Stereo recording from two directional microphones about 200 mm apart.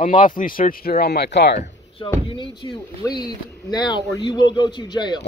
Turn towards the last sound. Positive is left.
turn(degrees=20)  # may be behind; listen again after turning